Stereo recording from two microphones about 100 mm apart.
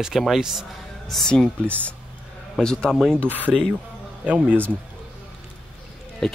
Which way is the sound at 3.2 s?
15° right (ahead or behind).